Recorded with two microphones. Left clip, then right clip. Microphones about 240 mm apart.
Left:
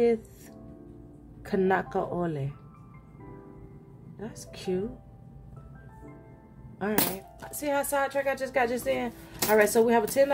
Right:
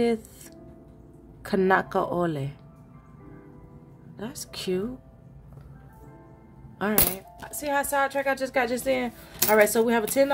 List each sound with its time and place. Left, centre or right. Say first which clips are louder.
1.4 s speech: right 4 dB; centre
4.2 s speech: right 5 dB; centre
6.8 s speech: right 2 dB; centre
7.6 s speech: right 3 dB; centre